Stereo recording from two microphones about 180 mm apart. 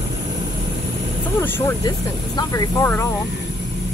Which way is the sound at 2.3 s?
15° left (ahead or behind).